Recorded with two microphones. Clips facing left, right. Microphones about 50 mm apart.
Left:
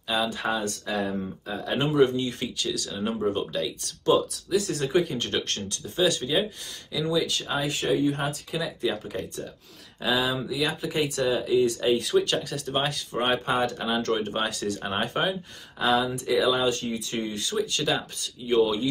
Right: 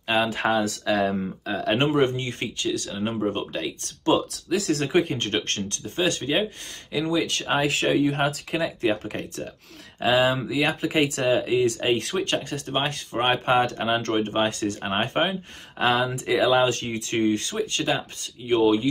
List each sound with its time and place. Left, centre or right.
0.0 s speech: right
2.6 s speech: right
3.3 s speech: right
4.6 s speech: right
4.8 s speech: right
7.1 s speech: right
8.5 s speech: right
8.9 s speech: right
9.9 s speech: right
11.9 s speech: right
12.4 s speech: right
15.8 s speech: right